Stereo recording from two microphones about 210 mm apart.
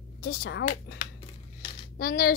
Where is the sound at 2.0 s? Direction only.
50° left (ahead or behind).